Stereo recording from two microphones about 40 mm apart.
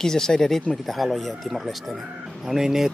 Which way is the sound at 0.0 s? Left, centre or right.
Centre.